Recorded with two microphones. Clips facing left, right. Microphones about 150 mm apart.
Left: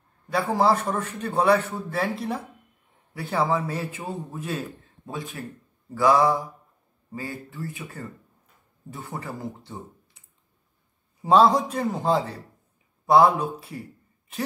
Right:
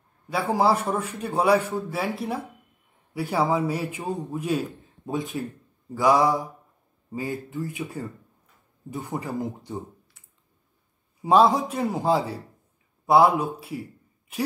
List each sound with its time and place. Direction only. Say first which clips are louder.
0.3 s a man's voice: even; 10° right (ahead or behind)
9.1 s a man's voice: right 4 dB; 15° right (ahead or behind)
11.2 s a man's voice: left 1 dB; centre (ahead or behind)